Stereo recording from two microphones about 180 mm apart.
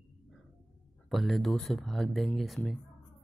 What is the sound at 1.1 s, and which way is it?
Speech, centre (ahead or behind).